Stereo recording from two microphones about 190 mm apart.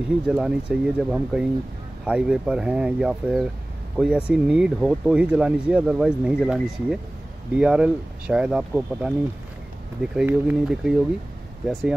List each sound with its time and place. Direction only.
0.3 s speech: 5° right (ahead or behind)
10.1 s speech: 5° right (ahead or behind)